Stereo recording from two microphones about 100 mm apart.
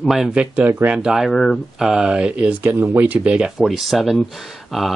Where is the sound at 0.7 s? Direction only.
20° right (ahead or behind).